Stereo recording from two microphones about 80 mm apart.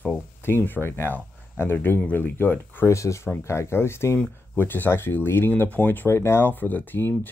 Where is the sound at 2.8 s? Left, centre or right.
Left.